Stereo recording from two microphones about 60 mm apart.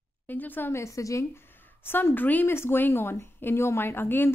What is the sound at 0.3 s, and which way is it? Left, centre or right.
Speech, left.